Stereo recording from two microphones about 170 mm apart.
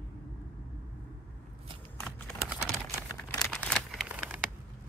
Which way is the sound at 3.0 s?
20° left (ahead or behind).